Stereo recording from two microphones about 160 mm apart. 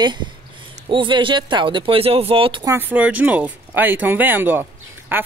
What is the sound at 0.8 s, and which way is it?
Speech, 30° right (ahead or behind).